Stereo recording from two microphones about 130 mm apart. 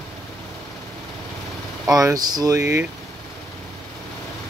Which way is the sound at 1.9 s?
30° right (ahead or behind).